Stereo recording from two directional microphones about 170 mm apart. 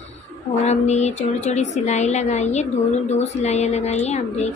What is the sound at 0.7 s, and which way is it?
A woman's voice, 40° left (ahead or behind).